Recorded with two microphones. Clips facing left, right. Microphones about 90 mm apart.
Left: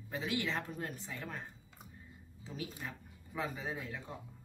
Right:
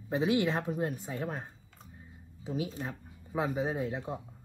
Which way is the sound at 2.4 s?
20° right (ahead or behind).